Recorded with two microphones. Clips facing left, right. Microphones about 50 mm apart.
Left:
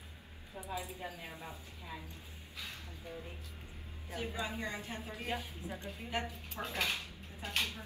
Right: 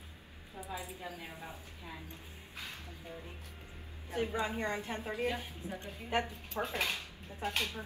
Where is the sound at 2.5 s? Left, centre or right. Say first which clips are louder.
Right 1 dB; right.